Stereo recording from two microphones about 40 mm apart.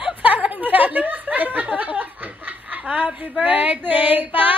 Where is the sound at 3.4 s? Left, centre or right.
Right.